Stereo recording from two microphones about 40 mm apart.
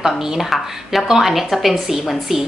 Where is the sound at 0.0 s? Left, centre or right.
Centre.